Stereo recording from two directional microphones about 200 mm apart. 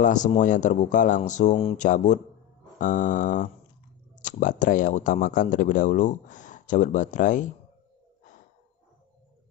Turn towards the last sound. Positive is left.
turn(degrees=40)  # may be behind; listen again after turning